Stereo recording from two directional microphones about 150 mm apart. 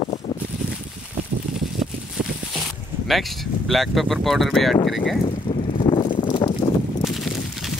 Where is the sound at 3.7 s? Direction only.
Centre (ahead or behind).